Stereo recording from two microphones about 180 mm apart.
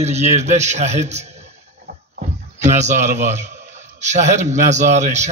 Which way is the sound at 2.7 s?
40° right (ahead or behind).